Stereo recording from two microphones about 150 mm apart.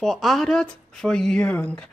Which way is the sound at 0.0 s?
Centre (ahead or behind).